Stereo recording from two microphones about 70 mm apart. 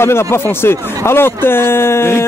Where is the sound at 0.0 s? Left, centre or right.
Left.